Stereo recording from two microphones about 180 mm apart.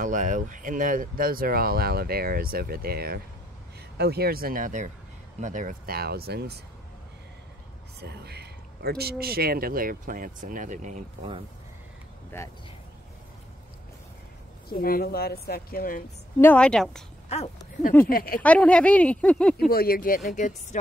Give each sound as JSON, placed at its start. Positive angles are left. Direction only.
{"t": 0.0, "sound": "speech", "side_deg": -45}
{"t": 8.0, "sound": "speech", "side_deg": -65}
{"t": 14.7, "sound": "speech", "side_deg": 55}
{"t": 16.3, "sound": "a woman's voice", "side_deg": 10}
{"t": 17.3, "sound": "speech", "side_deg": 35}
{"t": 18.0, "sound": "speech", "side_deg": 55}
{"t": 18.4, "sound": "speech", "side_deg": 5}
{"t": 19.7, "sound": "speech", "side_deg": 55}